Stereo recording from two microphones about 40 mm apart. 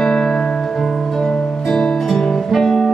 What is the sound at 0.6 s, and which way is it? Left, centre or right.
Music, centre.